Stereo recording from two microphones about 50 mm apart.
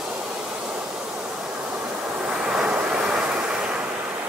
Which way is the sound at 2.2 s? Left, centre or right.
Centre.